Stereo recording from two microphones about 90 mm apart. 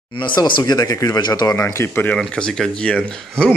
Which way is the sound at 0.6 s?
45° left (ahead or behind).